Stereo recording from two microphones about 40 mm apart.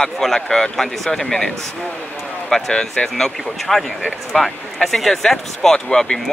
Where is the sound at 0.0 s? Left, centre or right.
Centre.